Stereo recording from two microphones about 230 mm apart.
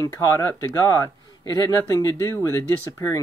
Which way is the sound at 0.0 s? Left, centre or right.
Centre.